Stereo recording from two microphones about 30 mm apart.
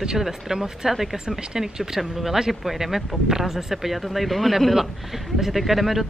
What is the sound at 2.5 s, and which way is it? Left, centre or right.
Speech, centre.